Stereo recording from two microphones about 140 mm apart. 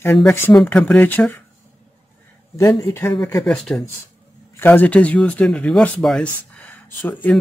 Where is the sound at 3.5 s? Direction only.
5° left (ahead or behind).